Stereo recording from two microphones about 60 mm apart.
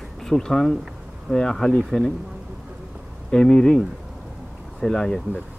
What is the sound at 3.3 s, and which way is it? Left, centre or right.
Speech, centre.